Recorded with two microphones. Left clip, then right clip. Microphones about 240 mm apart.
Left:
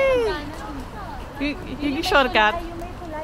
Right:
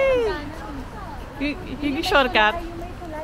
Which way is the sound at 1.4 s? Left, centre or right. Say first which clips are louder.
Even; centre.